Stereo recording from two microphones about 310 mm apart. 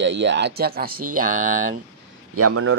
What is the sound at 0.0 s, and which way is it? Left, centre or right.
Speech, right.